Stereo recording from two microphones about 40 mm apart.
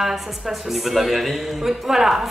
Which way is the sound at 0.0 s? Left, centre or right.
Centre.